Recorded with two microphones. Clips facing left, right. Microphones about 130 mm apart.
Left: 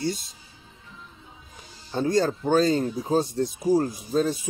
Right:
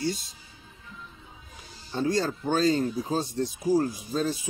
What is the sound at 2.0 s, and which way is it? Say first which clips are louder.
Speech: left 4 dB; 45° left (ahead or behind).